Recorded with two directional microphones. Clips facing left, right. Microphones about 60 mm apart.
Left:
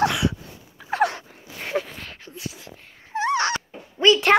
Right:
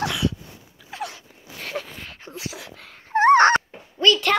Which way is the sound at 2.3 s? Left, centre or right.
Right.